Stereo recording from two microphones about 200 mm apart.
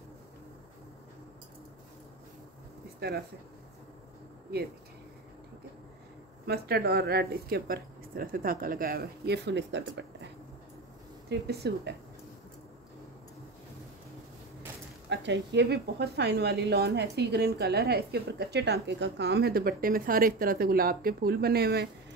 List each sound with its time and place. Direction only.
6.4 s speech: 55° right (ahead or behind)
11.2 s speech: 55° right (ahead or behind)
15.0 s speech: 60° right (ahead or behind)